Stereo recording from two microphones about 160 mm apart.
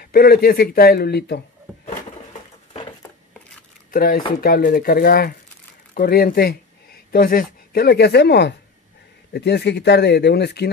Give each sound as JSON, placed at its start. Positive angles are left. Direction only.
{"t": 0.0, "sound": "speech", "side_deg": 70}
{"t": 3.9, "sound": "speech", "side_deg": 65}